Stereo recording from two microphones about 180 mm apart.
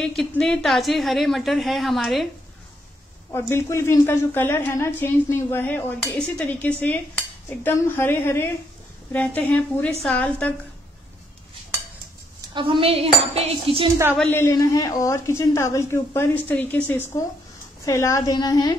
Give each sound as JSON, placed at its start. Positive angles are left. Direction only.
{"t": 0.0, "sound": "a woman's voice", "side_deg": 5}
{"t": 3.3, "sound": "a woman's voice", "side_deg": 15}
{"t": 12.5, "sound": "speech", "side_deg": -30}
{"t": 14.1, "sound": "a woman's voice", "side_deg": 10}